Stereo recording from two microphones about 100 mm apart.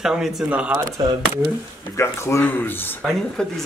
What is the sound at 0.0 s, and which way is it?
Speech, 5° right (ahead or behind).